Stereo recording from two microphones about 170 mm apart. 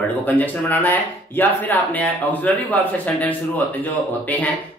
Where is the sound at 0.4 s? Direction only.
10° left (ahead or behind).